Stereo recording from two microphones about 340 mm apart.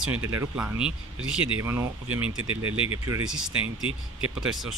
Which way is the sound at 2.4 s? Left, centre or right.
Right.